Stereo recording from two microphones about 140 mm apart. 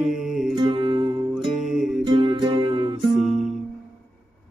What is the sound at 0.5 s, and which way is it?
Music, 35° right (ahead or behind).